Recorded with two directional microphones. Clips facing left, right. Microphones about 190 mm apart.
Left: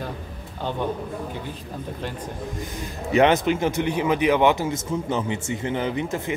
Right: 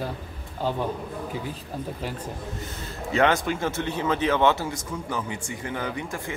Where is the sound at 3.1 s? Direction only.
20° left (ahead or behind).